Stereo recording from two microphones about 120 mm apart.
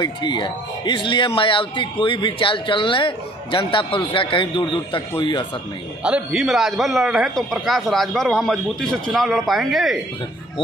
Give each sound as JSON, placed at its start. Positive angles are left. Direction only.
{"t": 0.0, "sound": "speech", "side_deg": 40}
{"t": 6.0, "sound": "a man's voice", "side_deg": -5}